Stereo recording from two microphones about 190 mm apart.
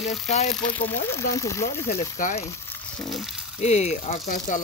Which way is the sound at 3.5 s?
35° left (ahead or behind).